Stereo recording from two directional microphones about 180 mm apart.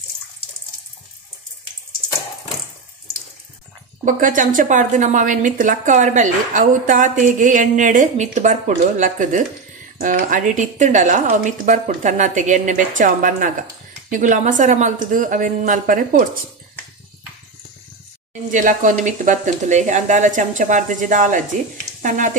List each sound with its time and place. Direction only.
4.0 s a woman's voice: 45° right (ahead or behind)
18.5 s a woman's voice: 45° right (ahead or behind)